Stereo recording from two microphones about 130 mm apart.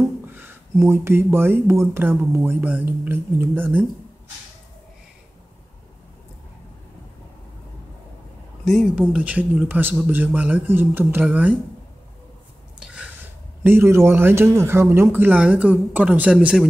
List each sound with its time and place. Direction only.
0.3 s speech: 15° right (ahead or behind)
8.6 s speech: centre (ahead or behind)
12.7 s a sound: 5° right (ahead or behind)
13.7 s speech: 20° right (ahead or behind)